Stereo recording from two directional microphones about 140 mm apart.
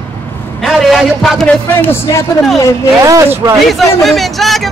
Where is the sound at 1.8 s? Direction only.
20° left (ahead or behind).